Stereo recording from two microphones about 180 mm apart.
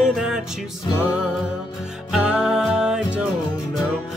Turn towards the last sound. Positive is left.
turn(degrees=-5)  # may be behind; listen again after turning